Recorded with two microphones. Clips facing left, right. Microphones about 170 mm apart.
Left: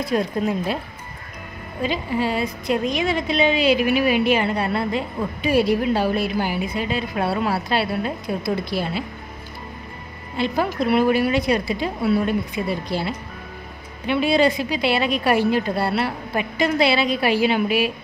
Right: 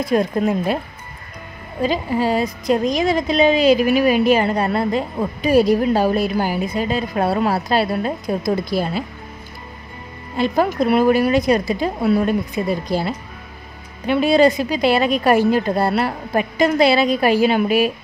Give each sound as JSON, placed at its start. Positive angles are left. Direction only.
{"t": 0.0, "sound": "a woman's voice", "side_deg": -50}
{"t": 1.8, "sound": "a woman's voice", "side_deg": -40}
{"t": 10.3, "sound": "a woman's voice", "side_deg": -45}